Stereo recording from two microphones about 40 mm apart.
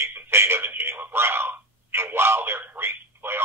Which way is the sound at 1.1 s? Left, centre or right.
Right.